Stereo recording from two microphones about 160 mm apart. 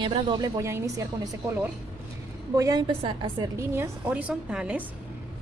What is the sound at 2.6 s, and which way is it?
Speech, 25° right (ahead or behind).